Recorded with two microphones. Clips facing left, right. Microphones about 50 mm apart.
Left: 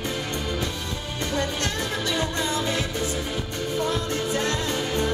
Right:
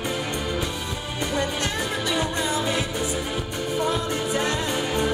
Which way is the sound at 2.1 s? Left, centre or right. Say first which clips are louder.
Right 1 dB; centre.